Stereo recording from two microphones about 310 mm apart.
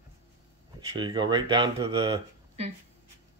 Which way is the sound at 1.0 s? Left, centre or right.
Centre.